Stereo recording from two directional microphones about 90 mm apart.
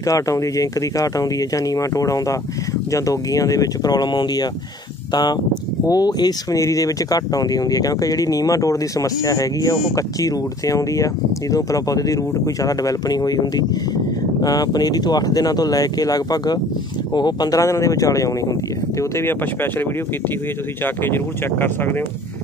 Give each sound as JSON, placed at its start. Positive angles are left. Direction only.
{"t": 0.0, "sound": "speech", "side_deg": 35}
{"t": 20.8, "sound": "speech", "side_deg": 25}